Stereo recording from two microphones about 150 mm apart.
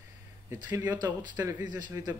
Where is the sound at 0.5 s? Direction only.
10° right (ahead or behind).